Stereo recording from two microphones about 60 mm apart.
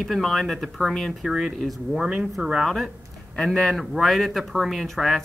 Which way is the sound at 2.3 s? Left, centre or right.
Centre.